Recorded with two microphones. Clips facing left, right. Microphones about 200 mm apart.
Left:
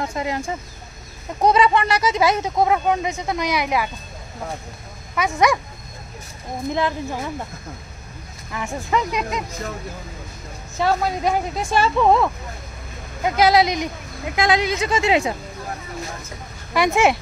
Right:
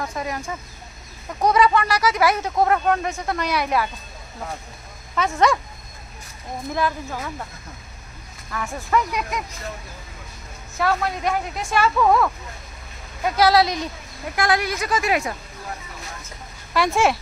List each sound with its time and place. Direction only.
0.0 s speech: 25° left (ahead or behind)
5.1 s speech: 15° left (ahead or behind)
6.7 s speech: 20° left (ahead or behind)
8.5 s speech: 20° left (ahead or behind)
10.8 s speech: 30° left (ahead or behind)
16.7 s speech: 15° left (ahead or behind)